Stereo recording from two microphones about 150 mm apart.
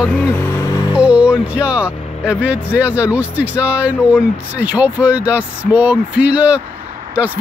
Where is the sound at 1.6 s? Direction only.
10° right (ahead or behind).